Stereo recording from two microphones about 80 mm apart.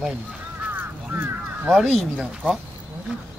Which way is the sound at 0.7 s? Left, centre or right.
Right.